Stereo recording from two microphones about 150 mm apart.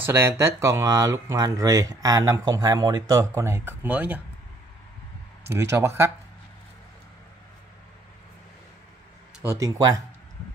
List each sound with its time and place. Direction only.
0.0 s speech: 15° right (ahead or behind)
5.5 s speech: 15° right (ahead or behind)
9.4 s speech: 20° right (ahead or behind)